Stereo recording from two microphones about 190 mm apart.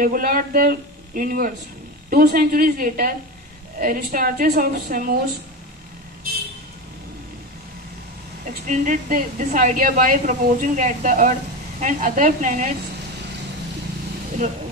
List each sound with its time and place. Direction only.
0.0 s speech: 50° right (ahead or behind)
8.6 s a woman's voice: 40° right (ahead or behind)